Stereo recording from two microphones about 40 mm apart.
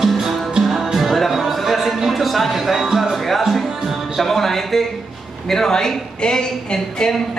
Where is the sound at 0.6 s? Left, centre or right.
Centre.